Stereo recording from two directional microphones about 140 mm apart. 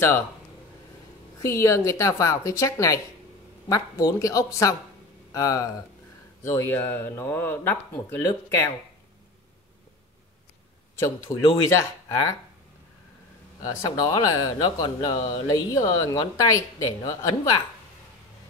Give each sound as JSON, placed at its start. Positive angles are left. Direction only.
{"t": 1.4, "sound": "speech", "side_deg": 20}
{"t": 11.7, "sound": "speech", "side_deg": 20}
{"t": 13.6, "sound": "speech", "side_deg": 25}